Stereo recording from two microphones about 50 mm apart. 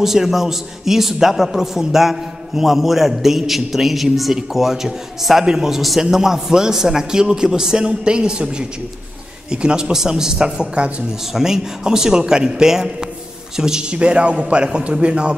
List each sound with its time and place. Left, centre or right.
0.0 s a man's voice: centre; by 11.1 s right
11.3 s a man's voice: centre